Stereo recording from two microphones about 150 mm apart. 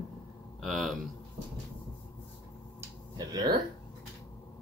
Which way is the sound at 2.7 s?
25° right (ahead or behind).